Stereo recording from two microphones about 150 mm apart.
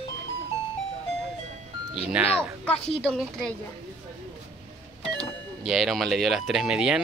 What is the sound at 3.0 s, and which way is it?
Speech, 5° left (ahead or behind).